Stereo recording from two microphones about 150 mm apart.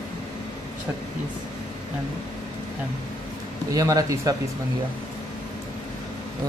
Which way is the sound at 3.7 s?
25° right (ahead or behind).